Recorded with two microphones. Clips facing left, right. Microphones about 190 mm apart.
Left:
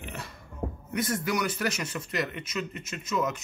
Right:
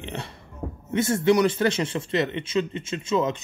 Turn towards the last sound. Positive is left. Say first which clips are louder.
# right 6 dB
turn(degrees=-25)  # may be behind; listen again after turning